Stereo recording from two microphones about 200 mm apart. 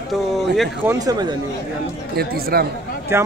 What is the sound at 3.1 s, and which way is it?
Speech, 15° right (ahead or behind).